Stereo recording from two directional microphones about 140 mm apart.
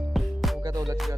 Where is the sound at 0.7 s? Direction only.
25° right (ahead or behind).